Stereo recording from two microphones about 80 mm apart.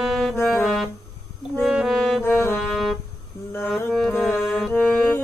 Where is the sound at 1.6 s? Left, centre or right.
Centre.